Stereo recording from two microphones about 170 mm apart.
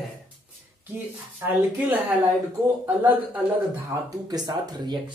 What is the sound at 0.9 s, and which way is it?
Speech, 15° right (ahead or behind).